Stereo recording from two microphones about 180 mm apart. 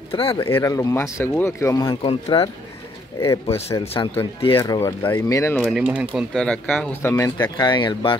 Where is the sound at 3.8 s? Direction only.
30° left (ahead or behind).